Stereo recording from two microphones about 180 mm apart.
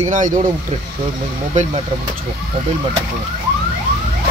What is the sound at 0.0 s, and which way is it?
Speech, 45° right (ahead or behind).